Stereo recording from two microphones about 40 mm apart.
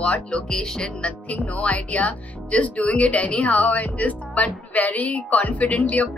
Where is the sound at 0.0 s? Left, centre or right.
Left.